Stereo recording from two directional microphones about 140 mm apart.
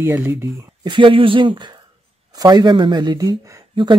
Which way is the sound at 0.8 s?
35° right (ahead or behind).